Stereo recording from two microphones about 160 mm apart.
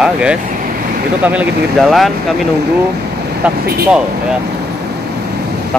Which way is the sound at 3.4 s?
5° right (ahead or behind).